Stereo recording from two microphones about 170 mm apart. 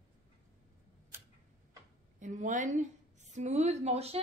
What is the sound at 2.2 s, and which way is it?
A woman's voice, 50° right (ahead or behind).